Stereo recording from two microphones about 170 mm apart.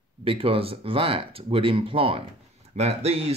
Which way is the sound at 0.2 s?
30° right (ahead or behind).